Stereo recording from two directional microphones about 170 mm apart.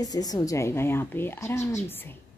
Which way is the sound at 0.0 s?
20° left (ahead or behind).